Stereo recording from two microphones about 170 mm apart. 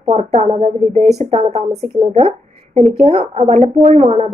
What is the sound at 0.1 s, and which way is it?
A woman's voice, 40° right (ahead or behind).